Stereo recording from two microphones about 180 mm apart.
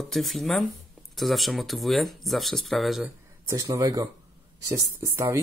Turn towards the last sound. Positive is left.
turn(degrees=-15)  # may be behind; listen again after turning